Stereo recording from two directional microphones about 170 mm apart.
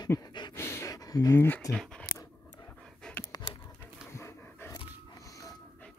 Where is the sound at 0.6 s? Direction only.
15° left (ahead or behind).